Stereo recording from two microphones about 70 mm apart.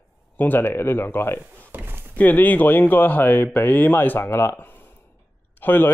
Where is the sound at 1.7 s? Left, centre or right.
Right.